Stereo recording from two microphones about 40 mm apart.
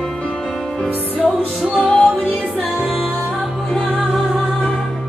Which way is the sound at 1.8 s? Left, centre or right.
Left.